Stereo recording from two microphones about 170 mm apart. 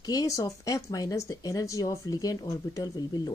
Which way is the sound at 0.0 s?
20° left (ahead or behind).